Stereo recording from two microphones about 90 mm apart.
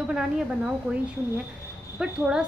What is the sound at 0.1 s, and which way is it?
Speech, 5° right (ahead or behind).